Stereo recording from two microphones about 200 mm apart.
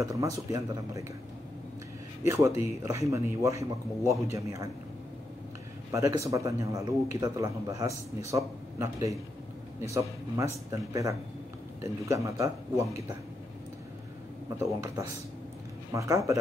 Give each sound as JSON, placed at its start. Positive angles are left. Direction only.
{"t": 0.0, "sound": "a man's voice", "side_deg": -15}
{"t": 2.2, "sound": "a man's voice", "side_deg": -15}
{"t": 5.9, "sound": "a man's voice", "side_deg": -15}
{"t": 14.6, "sound": "a man's voice", "side_deg": -15}